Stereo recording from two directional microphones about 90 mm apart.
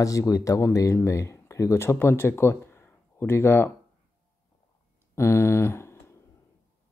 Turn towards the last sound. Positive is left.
turn(degrees=30)  # may be behind; listen again after turning